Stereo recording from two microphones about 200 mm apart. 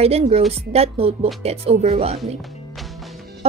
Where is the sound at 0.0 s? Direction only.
30° right (ahead or behind).